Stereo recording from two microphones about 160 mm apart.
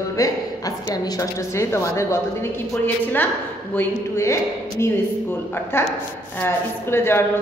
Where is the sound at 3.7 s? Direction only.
15° left (ahead or behind).